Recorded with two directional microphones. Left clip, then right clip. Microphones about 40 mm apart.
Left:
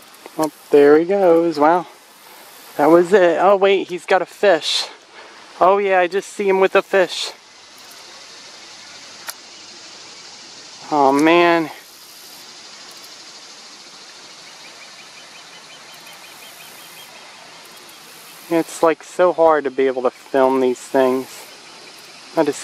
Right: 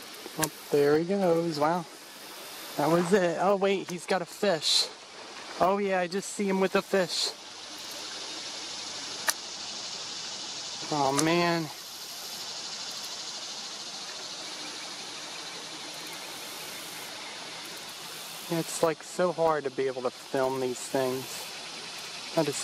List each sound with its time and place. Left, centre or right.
0.7 s speech: left
2.8 s speech: left
3.7 s speech: left
10.9 s speech: centre
11.2 s speech: left
18.5 s speech: left